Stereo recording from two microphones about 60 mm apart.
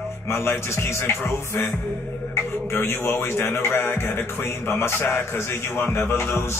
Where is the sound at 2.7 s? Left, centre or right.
Left.